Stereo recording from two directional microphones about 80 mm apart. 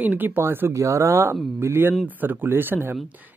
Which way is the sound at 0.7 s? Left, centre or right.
Right.